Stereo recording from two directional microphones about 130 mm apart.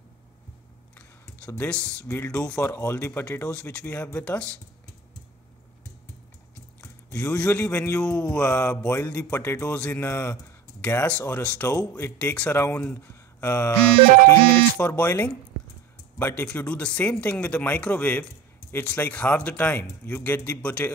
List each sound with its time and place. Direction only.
1.6 s speech: 10° left (ahead or behind)
6.8 s a sound: 25° left (ahead or behind)
7.4 s speech: 15° left (ahead or behind)
11.7 s speech: 25° left (ahead or behind)
14.8 s speech: 15° left (ahead or behind)